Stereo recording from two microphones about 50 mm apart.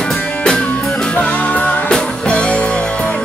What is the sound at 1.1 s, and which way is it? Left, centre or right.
Music, left.